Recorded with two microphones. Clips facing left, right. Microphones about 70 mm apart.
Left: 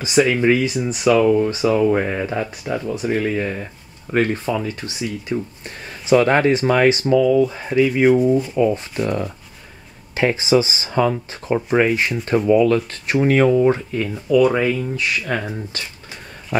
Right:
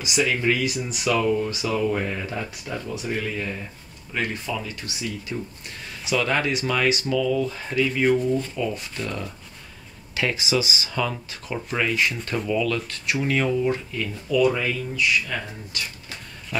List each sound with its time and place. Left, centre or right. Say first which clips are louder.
0.0 s speech: left 7 dB; left
1.1 s speech: left 7 dB; centre
1.4 s speech: left 8 dB; left
7.2 s speech: left 8 dB; centre
8.5 s speech: left 10 dB; left
14.1 s speech: left 6 dB; left
15.0 s speech: left 2 dB; left
15.7 s speech: left 1 dB; left